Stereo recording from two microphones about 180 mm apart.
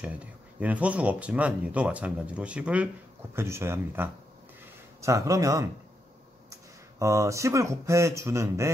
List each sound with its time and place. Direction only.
0.0 s speech: 10° right (ahead or behind)